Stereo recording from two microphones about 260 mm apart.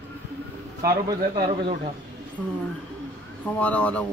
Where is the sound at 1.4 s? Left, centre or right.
Right.